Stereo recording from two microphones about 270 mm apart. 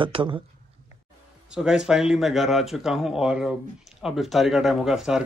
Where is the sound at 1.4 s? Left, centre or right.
Centre.